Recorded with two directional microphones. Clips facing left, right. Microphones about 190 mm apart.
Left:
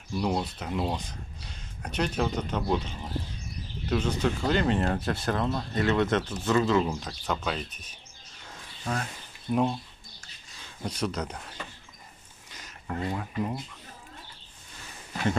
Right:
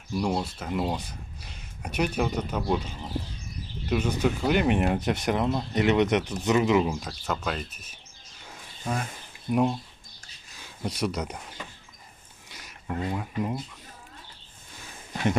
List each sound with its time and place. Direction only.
0.1 s speech: 5° right (ahead or behind)
3.9 s speech: 10° right (ahead or behind)
6.9 s speech: 5° right (ahead or behind)
8.5 s a sound: 10° right (ahead or behind)
9.5 s speech: 5° right (ahead or behind)
12.4 s a sound: 10° right (ahead or behind)